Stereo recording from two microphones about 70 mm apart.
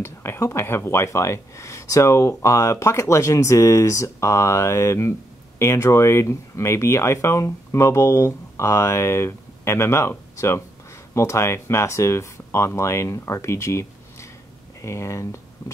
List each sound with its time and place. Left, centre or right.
0.0 s speech: left